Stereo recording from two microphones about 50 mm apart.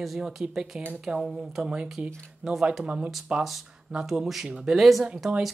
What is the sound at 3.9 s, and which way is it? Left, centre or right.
Speech, centre.